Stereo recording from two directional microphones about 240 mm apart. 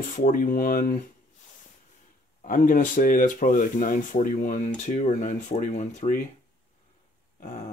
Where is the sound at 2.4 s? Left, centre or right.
Left.